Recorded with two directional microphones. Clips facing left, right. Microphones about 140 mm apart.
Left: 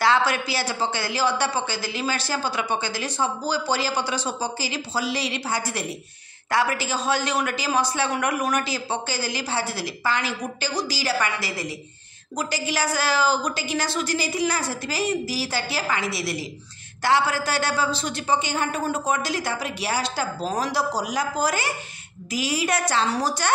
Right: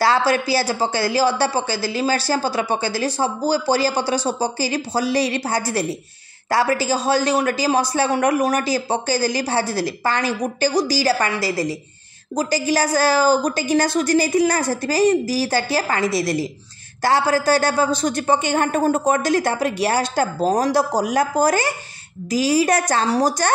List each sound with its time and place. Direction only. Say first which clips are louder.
0.0 s a man's voice: right 4 dB; 35° right (ahead or behind)